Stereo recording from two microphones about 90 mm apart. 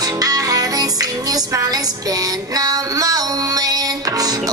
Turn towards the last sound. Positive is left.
turn(degrees=-45)  # may be behind; listen again after turning